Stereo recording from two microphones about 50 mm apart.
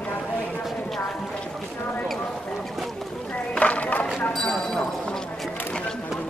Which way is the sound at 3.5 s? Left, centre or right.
Left.